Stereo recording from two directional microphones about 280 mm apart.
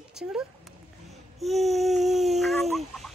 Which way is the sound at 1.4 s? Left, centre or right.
Centre.